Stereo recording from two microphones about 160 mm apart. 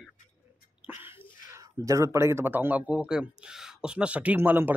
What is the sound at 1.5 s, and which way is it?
Speech, 20° right (ahead or behind).